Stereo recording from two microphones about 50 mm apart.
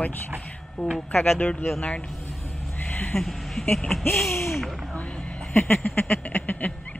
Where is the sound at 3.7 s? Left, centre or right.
Centre.